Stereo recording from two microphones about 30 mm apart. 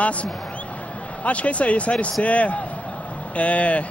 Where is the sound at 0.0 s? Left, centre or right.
Left.